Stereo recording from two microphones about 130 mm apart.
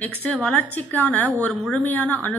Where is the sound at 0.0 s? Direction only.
10° left (ahead or behind).